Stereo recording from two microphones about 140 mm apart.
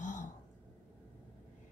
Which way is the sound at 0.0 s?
60° left (ahead or behind).